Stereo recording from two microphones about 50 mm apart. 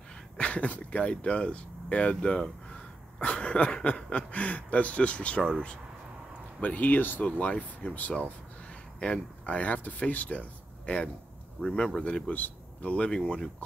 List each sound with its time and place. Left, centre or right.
0.4 s speech: left
6.6 s speech: left
7.2 s speech: left
11.6 s speech: centre
12.0 s a man's voice: left
12.9 s speech: left